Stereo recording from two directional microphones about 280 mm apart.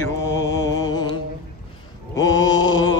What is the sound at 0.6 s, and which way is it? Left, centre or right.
Music, centre.